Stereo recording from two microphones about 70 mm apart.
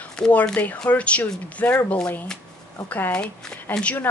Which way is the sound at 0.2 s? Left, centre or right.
Centre.